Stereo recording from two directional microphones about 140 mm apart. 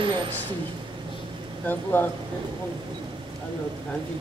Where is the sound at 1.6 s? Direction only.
15° left (ahead or behind).